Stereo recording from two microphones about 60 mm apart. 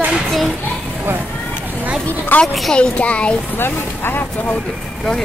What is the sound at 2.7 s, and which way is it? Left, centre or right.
Speech, centre.